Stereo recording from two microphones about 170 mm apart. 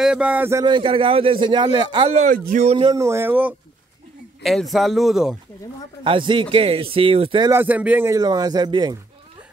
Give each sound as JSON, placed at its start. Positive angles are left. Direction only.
{"t": 0.0, "sound": "a man's voice", "side_deg": -5}
{"t": 0.7, "sound": "a man's voice", "side_deg": -30}
{"t": 2.1, "sound": "speech", "side_deg": -50}
{"t": 2.6, "sound": "speech", "side_deg": -35}
{"t": 2.9, "sound": "a man's voice", "side_deg": -15}
{"t": 4.4, "sound": "speech", "side_deg": 0}
{"t": 6.0, "sound": "a man's voice", "side_deg": -30}
{"t": 7.5, "sound": "a man's voice", "side_deg": -10}